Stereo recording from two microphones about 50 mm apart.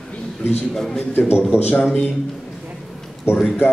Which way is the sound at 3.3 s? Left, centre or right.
Left.